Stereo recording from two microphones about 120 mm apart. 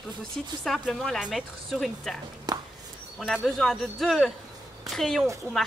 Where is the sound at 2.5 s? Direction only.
35° right (ahead or behind).